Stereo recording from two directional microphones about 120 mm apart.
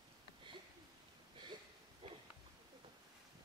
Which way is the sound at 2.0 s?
45° right (ahead or behind).